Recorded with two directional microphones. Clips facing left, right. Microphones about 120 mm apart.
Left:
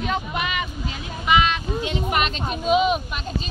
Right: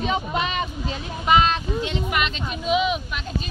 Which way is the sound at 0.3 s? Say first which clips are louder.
Right 2 dB; 30° right (ahead or behind).